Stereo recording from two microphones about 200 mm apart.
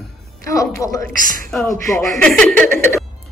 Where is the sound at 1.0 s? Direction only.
45° right (ahead or behind).